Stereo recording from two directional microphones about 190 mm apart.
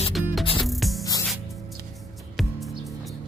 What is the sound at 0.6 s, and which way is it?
Music, centre (ahead or behind).